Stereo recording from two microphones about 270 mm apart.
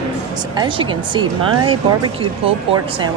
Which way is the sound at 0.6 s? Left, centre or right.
Centre.